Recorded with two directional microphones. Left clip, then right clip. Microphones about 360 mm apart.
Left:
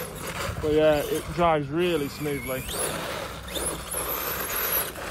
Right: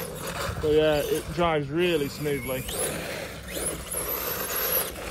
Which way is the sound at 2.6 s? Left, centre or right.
Centre.